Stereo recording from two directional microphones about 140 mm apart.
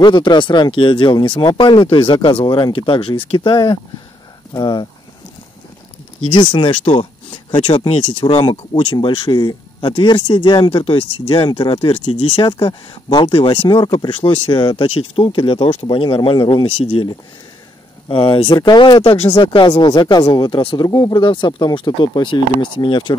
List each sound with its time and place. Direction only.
0.0 s speech: 35° left (ahead or behind)
6.2 s speech: 35° left (ahead or behind)